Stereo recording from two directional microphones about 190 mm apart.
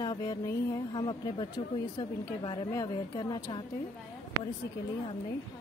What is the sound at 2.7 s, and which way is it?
Speech, 20° left (ahead or behind).